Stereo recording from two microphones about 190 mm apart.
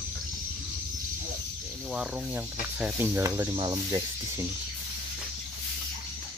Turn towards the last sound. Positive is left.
turn(degrees=-20)  # may be behind; listen again after turning